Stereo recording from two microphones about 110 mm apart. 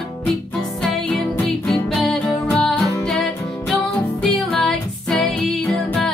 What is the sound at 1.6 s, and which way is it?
Music, centre (ahead or behind).